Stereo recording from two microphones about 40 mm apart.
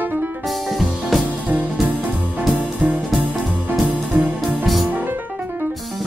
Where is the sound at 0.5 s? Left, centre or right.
Centre.